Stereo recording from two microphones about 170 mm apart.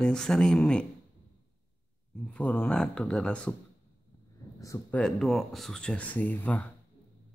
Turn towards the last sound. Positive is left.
turn(degrees=10)  # may be behind; listen again after turning